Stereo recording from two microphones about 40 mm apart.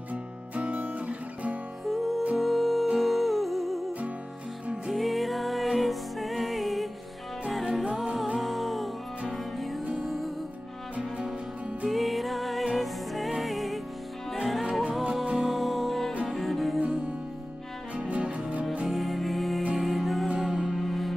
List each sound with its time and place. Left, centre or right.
0.1 s music: right
1.9 s music: centre
4.8 s music: centre
11.9 s music: centre
17.9 s music: right
18.9 s music: centre